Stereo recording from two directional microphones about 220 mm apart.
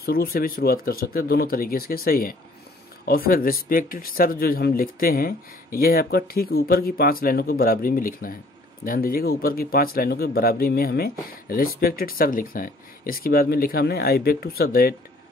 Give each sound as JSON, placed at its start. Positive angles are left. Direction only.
{"t": 0.0, "sound": "speech", "side_deg": 45}